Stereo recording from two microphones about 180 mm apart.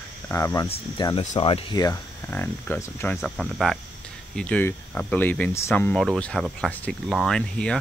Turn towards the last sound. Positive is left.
turn(degrees=5)  # may be behind; listen again after turning